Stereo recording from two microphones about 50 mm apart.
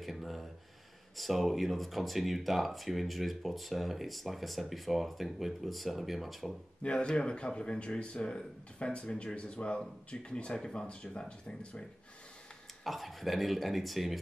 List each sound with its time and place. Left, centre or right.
0.0 s a sound: centre
1.1 s speech: centre
6.8 s speech: left
12.8 s speech: centre